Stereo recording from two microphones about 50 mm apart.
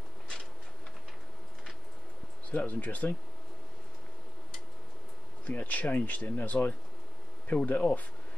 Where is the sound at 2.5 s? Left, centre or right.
Left.